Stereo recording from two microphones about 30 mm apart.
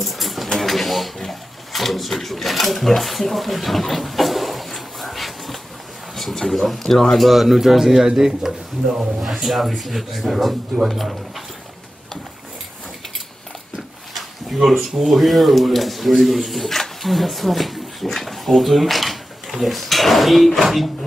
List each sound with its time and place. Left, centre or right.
0.0 s sewing machine: centre
6.3 s speech: centre
7.2 s speech: centre
8.1 s speech: centre
9.4 s speech: centre
14.1 s a sound: centre
14.9 s speech: centre
16.6 s a sound: centre
17.1 s speech: centre